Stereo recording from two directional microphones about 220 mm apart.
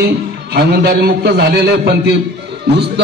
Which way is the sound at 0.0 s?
50° right (ahead or behind).